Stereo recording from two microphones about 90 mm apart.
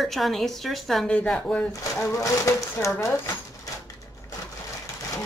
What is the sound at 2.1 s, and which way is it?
Speech, 35° left (ahead or behind).